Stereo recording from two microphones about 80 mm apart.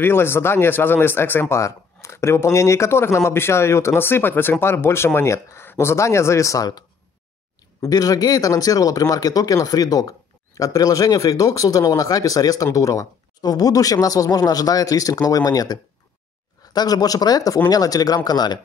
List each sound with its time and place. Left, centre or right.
0.0 s speech: left
7.9 s speech: left